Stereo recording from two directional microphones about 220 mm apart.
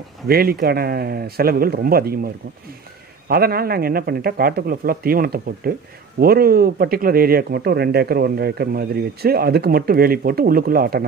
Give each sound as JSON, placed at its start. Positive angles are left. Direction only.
{"t": 0.3, "sound": "speech", "side_deg": -45}
{"t": 3.3, "sound": "speech", "side_deg": -45}